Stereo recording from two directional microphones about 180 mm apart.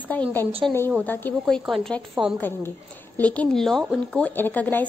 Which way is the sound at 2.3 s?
10° left (ahead or behind).